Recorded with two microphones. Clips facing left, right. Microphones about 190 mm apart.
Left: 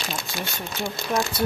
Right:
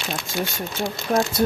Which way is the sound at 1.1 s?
45° right (ahead or behind).